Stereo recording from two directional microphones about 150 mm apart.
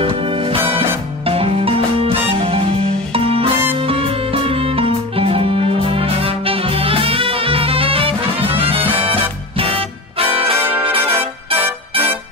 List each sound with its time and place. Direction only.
0.0 s music: 35° right (ahead or behind)